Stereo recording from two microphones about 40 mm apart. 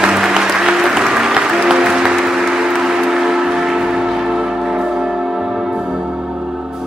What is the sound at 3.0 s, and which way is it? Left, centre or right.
Train, centre.